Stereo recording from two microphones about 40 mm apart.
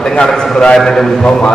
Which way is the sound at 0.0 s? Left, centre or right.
Left.